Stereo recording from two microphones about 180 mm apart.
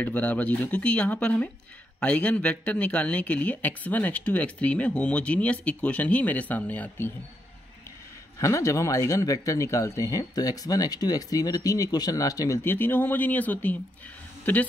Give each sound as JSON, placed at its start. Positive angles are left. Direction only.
{"t": 0.0, "sound": "speech", "side_deg": 10}
{"t": 8.4, "sound": "speech", "side_deg": 15}